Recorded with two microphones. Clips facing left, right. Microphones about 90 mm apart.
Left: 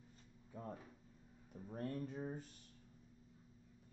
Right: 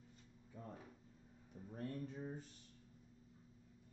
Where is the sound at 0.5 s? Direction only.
50° left (ahead or behind).